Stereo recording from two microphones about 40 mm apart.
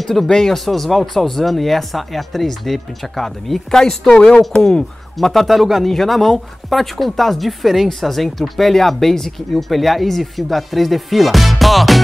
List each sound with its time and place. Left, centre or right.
0.0 s speech: centre
5.2 s speech: centre